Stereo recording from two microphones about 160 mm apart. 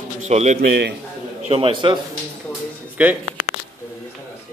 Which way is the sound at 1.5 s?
35° right (ahead or behind).